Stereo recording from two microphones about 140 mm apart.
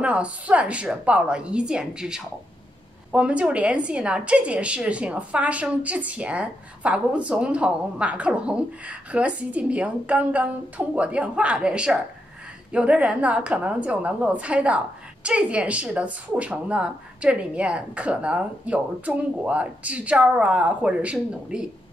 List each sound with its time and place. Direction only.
0.0 s a woman's voice: 10° right (ahead or behind)